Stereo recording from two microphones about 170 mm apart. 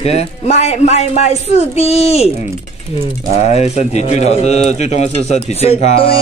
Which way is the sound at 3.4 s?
40° left (ahead or behind).